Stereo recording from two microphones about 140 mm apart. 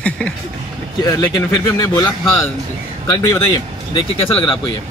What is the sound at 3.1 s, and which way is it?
Speech, 25° left (ahead or behind).